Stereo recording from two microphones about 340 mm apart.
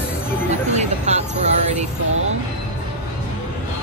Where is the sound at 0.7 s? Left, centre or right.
Centre.